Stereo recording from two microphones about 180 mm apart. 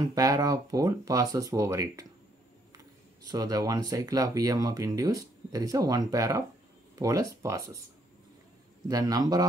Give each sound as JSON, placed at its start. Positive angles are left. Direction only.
{"t": 0.1, "sound": "speech", "side_deg": -20}
{"t": 3.3, "sound": "speech", "side_deg": -20}
{"t": 8.8, "sound": "speech", "side_deg": -20}